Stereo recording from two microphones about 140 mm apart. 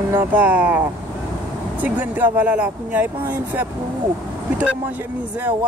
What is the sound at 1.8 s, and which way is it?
Speech, 10° right (ahead or behind).